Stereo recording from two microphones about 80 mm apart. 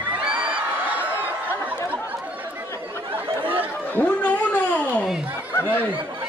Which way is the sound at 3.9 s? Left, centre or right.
Left.